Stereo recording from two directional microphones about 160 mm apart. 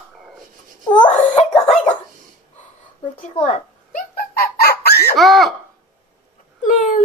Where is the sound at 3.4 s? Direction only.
55° left (ahead or behind); by 5.0 s 85° left.